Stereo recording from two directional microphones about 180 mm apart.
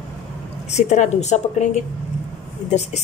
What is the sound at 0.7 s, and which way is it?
A woman's voice, 40° left (ahead or behind).